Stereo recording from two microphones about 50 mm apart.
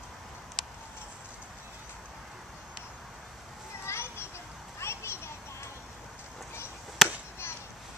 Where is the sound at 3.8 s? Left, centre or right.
Left.